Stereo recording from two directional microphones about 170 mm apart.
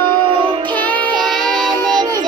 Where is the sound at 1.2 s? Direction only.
Centre (ahead or behind).